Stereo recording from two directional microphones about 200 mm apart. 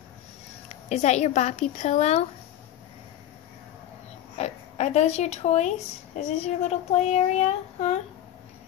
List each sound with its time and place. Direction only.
0.7 s speech: 35° left (ahead or behind)
4.4 s speech: 35° left (ahead or behind)